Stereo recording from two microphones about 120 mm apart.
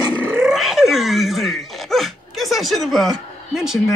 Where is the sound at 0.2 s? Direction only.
20° right (ahead or behind).